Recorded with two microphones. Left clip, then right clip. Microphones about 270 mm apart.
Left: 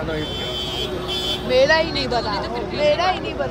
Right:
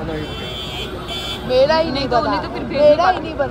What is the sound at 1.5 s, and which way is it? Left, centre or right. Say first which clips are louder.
Speech: right 2 dB; centre.